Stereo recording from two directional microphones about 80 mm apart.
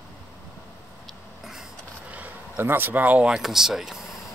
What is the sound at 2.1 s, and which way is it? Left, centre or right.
Speech, right.